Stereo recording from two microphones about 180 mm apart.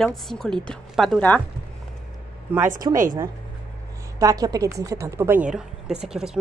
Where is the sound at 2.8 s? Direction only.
25° right (ahead or behind).